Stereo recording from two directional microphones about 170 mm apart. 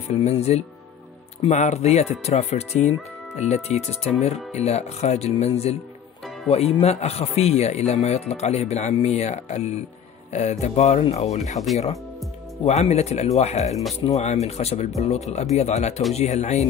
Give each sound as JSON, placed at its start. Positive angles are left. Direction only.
{"t": 0.1, "sound": "speech", "side_deg": 40}
{"t": 12.6, "sound": "speech", "side_deg": 40}